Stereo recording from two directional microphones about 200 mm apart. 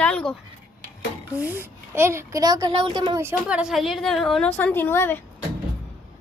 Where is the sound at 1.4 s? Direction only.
10° right (ahead or behind).